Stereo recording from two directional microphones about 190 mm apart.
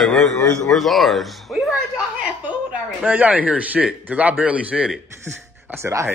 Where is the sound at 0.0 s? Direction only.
Centre (ahead or behind).